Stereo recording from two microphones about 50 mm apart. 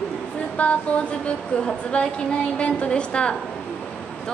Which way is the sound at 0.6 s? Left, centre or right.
Left.